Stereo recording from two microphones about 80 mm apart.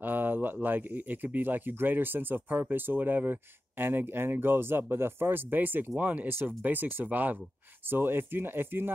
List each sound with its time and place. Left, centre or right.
0.0 s speech: right